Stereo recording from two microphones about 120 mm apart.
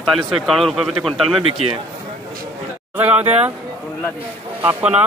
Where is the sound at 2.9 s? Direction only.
15° right (ahead or behind).